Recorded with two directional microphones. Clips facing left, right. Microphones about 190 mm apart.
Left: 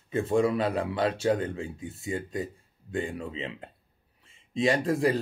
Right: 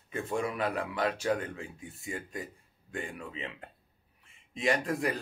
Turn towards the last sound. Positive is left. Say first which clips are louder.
# left 5 dB
turn(degrees=30)  # may be behind; listen again after turning